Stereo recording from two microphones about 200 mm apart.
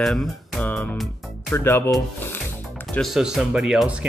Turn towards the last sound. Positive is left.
turn(degrees=-5)  # may be behind; listen again after turning